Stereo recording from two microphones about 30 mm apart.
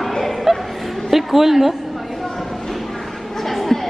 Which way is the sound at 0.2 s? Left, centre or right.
Centre.